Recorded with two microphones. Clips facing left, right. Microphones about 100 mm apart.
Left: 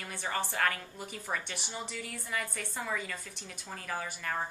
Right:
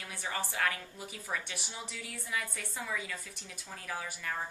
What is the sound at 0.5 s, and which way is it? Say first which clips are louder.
Speech: left 2 dB; 45° left (ahead or behind).